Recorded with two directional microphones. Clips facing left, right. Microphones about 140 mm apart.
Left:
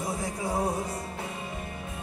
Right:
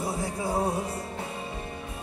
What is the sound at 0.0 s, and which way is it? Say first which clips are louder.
Music: right 1 dB; 30° right (ahead or behind).